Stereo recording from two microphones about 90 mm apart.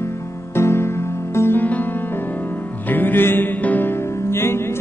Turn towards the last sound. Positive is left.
turn(degrees=25)  # may be behind; listen again after turning